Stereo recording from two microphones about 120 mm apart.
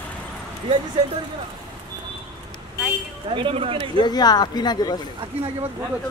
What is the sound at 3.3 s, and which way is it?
Speech, 50° right (ahead or behind).